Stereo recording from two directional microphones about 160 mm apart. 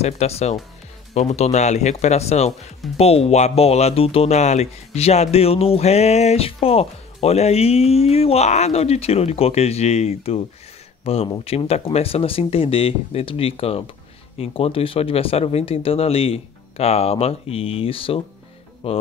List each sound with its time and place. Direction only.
0.0 s speech: 40° left (ahead or behind)